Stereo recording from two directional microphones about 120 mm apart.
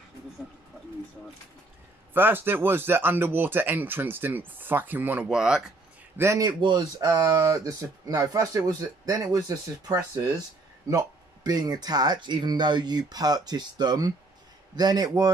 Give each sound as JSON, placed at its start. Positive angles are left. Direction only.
{"t": 2.1, "sound": "speech", "side_deg": -15}
{"t": 6.1, "sound": "a man's voice", "side_deg": -25}
{"t": 6.6, "sound": "speech", "side_deg": -35}